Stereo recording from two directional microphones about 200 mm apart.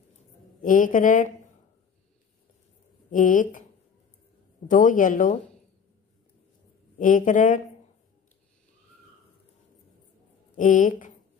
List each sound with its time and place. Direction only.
0.6 s a man's voice: 40° left (ahead or behind)
3.1 s speech: 40° left (ahead or behind)
4.6 s a man's voice: 40° left (ahead or behind)
7.0 s a man's voice: 40° left (ahead or behind)
10.5 s a woman's voice: 40° left (ahead or behind)